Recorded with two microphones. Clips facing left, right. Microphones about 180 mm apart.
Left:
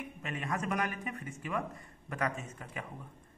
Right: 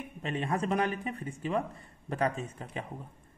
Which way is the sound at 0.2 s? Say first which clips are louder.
Right 6 dB; 30° right (ahead or behind).